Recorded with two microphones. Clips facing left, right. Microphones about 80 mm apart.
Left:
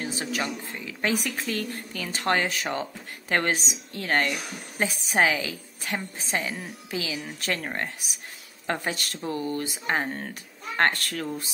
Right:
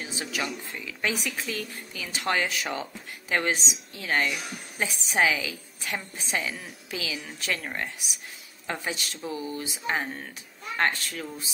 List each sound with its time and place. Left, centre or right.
0.0 s a sound: left
0.7 s speech: left
10.8 s speech: left